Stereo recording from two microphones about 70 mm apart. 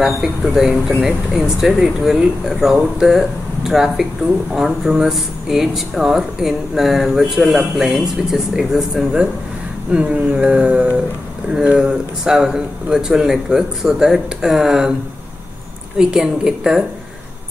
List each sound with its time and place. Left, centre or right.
0.6 s speech: centre
9.9 s a man's voice: centre
16.0 s a man's voice: centre